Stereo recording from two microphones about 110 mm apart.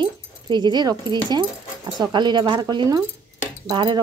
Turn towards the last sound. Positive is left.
turn(degrees=-45)  # may be behind; listen again after turning